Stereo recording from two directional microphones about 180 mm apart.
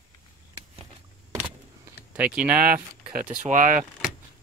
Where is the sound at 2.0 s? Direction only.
10° right (ahead or behind).